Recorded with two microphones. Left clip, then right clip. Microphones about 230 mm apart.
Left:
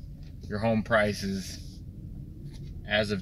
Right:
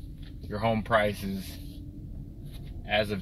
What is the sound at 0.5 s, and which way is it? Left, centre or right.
Speech, centre.